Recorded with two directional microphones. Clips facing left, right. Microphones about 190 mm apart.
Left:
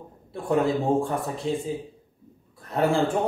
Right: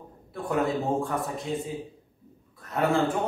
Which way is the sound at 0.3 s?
30° left (ahead or behind).